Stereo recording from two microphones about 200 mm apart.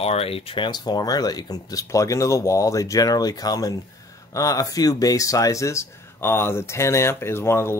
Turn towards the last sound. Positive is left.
turn(degrees=15)  # may be behind; listen again after turning